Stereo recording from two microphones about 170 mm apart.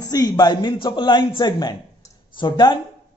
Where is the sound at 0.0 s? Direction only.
25° left (ahead or behind).